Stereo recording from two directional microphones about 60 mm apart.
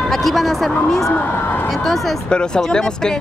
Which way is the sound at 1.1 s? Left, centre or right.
Left.